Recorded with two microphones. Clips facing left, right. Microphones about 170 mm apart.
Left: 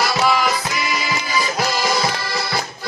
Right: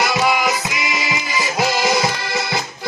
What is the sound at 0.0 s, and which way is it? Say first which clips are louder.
Music: even; 20° right (ahead or behind).